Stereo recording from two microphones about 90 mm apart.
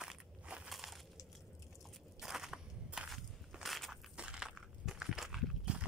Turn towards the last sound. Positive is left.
turn(degrees=-10)  # may be behind; listen again after turning